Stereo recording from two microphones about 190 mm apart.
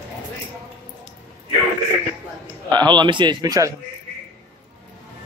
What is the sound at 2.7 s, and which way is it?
A man's voice, 25° right (ahead or behind).